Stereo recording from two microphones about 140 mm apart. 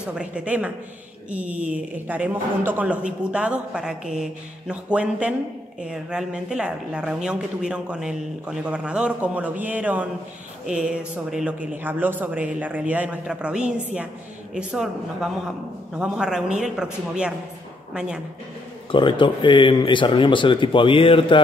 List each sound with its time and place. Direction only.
0.0 s a woman's voice: 10° right (ahead or behind)
18.9 s speech: 35° left (ahead or behind)